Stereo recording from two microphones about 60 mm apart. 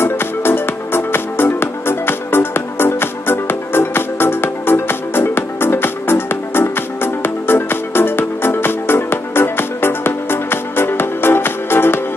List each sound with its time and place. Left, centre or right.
0.0 s music: left